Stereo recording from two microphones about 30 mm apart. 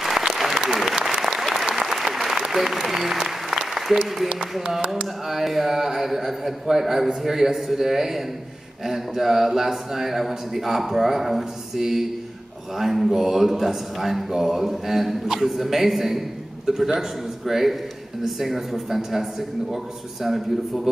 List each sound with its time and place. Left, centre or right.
0.0 s applause: centre
2.8 s a man's voice: centre
3.2 s applause: centre
5.3 s a man's voice: centre